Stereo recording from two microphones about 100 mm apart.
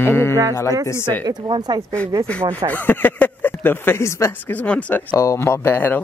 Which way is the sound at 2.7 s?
20° left (ahead or behind).